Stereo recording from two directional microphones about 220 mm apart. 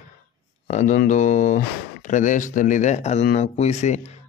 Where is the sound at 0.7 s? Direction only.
35° left (ahead or behind).